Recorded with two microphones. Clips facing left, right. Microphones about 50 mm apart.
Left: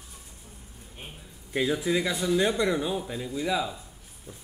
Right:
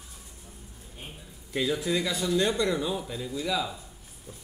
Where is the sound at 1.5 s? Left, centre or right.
Centre.